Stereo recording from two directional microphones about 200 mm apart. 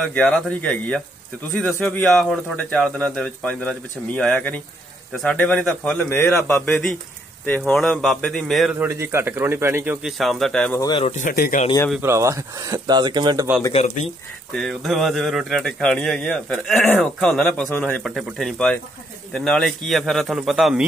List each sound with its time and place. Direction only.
0.0 s speech: 5° left (ahead or behind)
8.7 s speech: 10° right (ahead or behind)
10.1 s speech: centre (ahead or behind)
10.8 s speech: 25° left (ahead or behind)
11.1 s speech: 45° left (ahead or behind)
12.0 s speech: 15° right (ahead or behind)
13.7 s speech: 40° left (ahead or behind)
14.0 s speech: centre (ahead or behind)